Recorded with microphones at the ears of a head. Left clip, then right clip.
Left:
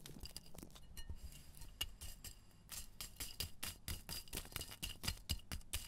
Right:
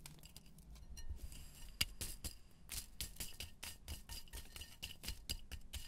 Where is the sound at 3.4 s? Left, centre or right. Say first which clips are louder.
Left 4 dB; left.